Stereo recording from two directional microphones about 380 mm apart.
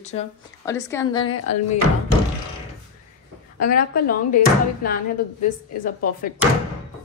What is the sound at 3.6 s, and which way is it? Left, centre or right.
Speech, left.